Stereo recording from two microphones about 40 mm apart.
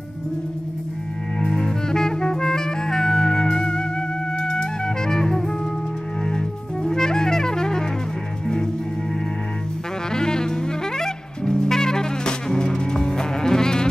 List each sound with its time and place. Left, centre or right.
1.4 s music: centre
10.1 s music: centre